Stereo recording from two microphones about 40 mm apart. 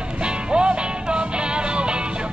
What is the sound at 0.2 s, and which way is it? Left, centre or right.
Music, right.